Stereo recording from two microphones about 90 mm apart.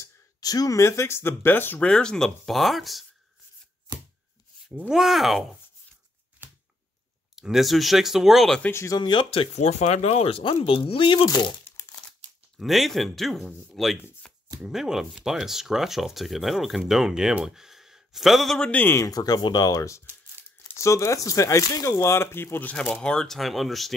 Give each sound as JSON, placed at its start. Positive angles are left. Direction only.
{"t": 0.0, "sound": "speech", "side_deg": 45}
{"t": 1.9, "sound": "speech", "side_deg": 10}
{"t": 4.7, "sound": "speech", "side_deg": -5}
{"t": 7.3, "sound": "speech", "side_deg": -5}
{"t": 8.9, "sound": "speech", "side_deg": 60}
{"t": 11.2, "sound": "speech", "side_deg": 50}
{"t": 12.5, "sound": "speech", "side_deg": 0}
{"t": 14.2, "sound": "chopping", "side_deg": 10}
{"t": 14.6, "sound": "speech", "side_deg": -5}
{"t": 18.7, "sound": "speech", "side_deg": 20}
{"t": 19.0, "sound": "speech", "side_deg": 45}
{"t": 23.0, "sound": "speech", "side_deg": 5}